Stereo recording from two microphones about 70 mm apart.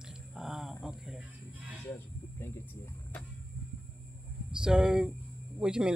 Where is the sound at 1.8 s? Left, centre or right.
Left.